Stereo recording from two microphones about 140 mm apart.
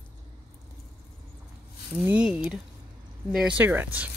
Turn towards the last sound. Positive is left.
turn(degrees=-15)  # may be behind; listen again after turning